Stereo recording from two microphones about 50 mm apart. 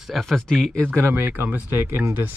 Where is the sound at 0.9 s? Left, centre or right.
Right.